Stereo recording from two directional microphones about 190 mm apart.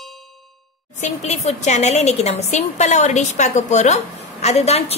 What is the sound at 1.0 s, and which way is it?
A woman's voice, 35° left (ahead or behind).